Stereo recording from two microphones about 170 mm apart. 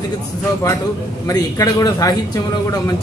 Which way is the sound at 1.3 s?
20° left (ahead or behind).